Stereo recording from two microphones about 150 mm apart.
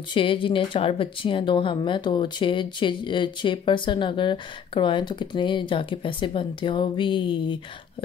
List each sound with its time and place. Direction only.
0.1 s speech: 35° left (ahead or behind)